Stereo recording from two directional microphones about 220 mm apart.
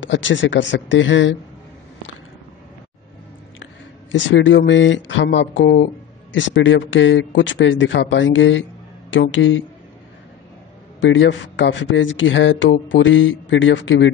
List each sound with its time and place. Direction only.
0.0 s speech: 55° left (ahead or behind)
4.1 s speech: 55° left (ahead or behind)
11.0 s speech: 55° left (ahead or behind)